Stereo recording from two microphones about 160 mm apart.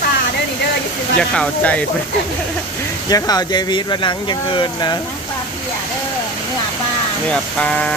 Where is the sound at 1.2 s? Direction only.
10° left (ahead or behind).